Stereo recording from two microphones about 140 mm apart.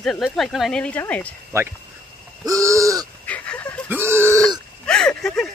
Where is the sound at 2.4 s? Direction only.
25° right (ahead or behind).